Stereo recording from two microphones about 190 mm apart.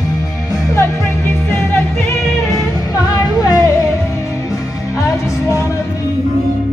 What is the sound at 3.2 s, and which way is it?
Music, 20° left (ahead or behind).